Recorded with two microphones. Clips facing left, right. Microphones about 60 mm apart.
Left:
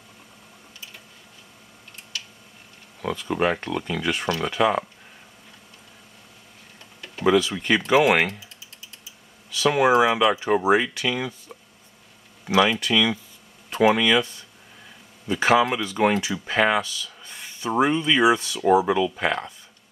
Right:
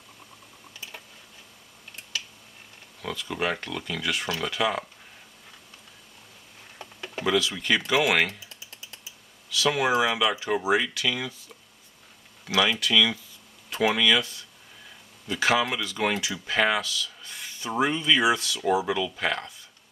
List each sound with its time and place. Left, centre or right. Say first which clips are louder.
3.0 s speech: left 6 dB; left
7.2 s speech: left 5 dB; left
9.7 s speech: left 6 dB; centre